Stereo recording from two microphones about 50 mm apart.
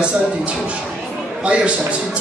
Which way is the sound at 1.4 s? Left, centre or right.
Right.